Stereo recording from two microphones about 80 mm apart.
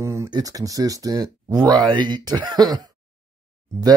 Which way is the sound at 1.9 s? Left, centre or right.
Right.